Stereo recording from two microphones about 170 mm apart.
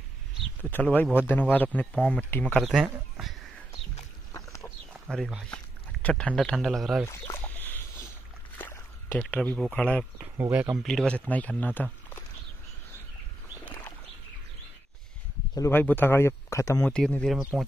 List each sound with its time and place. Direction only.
0.7 s speech: 10° left (ahead or behind)
4.3 s a sound: 20° left (ahead or behind)
5.1 s speech: centre (ahead or behind)
7.1 s a sound: 15° left (ahead or behind)
9.2 s speech: 5° left (ahead or behind)
10.3 s speech: 10° right (ahead or behind)
10.9 s speech: 5° left (ahead or behind)
13.7 s bird: 15° left (ahead or behind)
15.5 s speech: 15° left (ahead or behind)
16.9 s speech: 5° left (ahead or behind)
17.4 s speech: 10° right (ahead or behind)